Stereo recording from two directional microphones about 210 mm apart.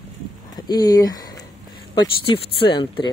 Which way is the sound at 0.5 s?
20° left (ahead or behind).